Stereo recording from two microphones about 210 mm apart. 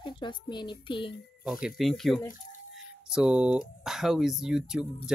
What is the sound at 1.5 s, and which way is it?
Speech, 5° right (ahead or behind).